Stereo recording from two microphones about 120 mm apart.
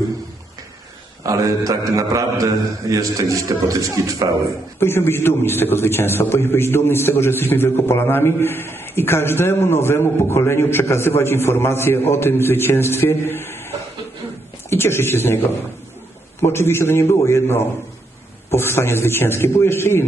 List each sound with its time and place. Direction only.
1.2 s a man's voice: 25° right (ahead or behind)
4.7 s a man's voice: 20° left (ahead or behind)
14.7 s a man's voice: 20° left (ahead or behind)